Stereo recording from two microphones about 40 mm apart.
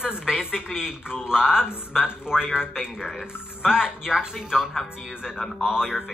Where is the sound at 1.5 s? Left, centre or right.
Left.